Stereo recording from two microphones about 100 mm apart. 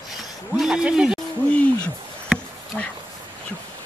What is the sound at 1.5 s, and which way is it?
Hoot, 10° left (ahead or behind).